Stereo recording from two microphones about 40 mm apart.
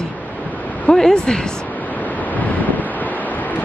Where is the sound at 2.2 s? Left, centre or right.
Left.